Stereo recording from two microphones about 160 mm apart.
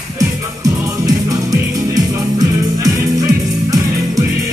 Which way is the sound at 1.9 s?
25° right (ahead or behind).